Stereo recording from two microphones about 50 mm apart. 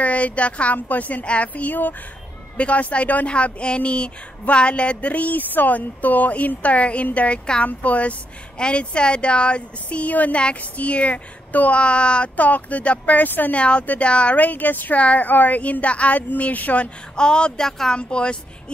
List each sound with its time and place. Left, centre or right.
0.0 s a woman's voice: left
17.1 s speech: centre